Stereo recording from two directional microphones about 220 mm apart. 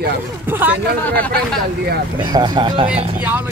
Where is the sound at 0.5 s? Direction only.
10° right (ahead or behind).